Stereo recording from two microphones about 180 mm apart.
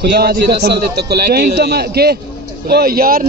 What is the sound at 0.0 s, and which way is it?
Speech, 65° right (ahead or behind).